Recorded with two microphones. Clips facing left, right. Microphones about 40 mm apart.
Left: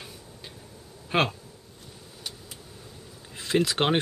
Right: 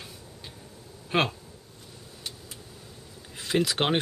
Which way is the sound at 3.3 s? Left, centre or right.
Centre.